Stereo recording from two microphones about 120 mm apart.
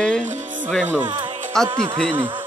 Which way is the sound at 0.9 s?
40° right (ahead or behind).